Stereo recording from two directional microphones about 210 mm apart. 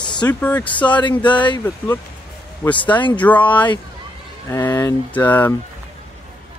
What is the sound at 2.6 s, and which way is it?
Speech, 5° left (ahead or behind).